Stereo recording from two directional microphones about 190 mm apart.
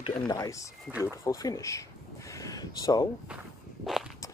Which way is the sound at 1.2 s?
20° left (ahead or behind).